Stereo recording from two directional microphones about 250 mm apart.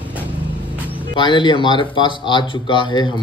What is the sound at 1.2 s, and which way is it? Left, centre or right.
Speech, centre.